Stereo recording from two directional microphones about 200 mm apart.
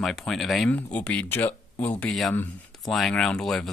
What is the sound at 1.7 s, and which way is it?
Speech, 25° left (ahead or behind).